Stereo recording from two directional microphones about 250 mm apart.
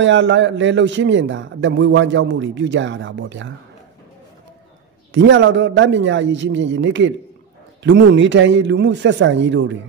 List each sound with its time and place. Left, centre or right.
0.0 s a man's voice: right
5.1 s a man's voice: right